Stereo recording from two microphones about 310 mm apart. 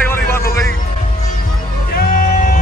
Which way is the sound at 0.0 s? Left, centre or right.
Centre.